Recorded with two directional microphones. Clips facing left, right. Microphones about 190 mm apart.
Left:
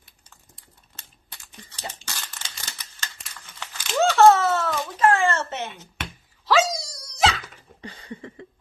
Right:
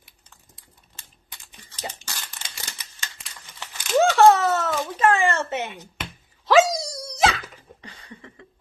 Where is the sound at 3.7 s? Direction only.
15° right (ahead or behind).